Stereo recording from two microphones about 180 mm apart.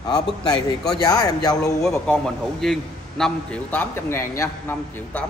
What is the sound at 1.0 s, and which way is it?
Speech, 20° left (ahead or behind).